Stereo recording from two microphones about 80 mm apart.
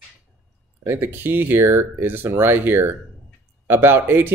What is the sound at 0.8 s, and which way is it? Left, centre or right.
Speech, right.